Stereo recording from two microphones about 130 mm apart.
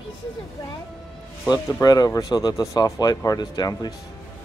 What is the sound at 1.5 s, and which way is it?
Speech, 30° left (ahead or behind).